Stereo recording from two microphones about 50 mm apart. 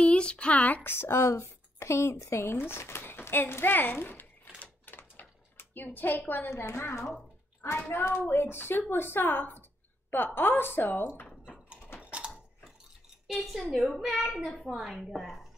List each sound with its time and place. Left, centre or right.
0.0 s speech: left
0.6 s a child's voice: left
0.8 s a woman's voice: left
3.7 s a child's voice: left
4.6 s typewriter: left
6.5 s a woman's voice: left
8.3 s a woman's voice: left
12.0 s mechanisms: right
13.3 s a woman's voice: centre